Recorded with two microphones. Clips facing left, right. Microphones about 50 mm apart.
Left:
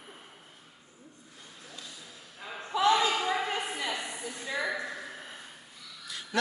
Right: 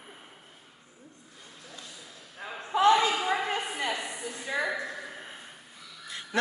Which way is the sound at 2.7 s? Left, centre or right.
Right.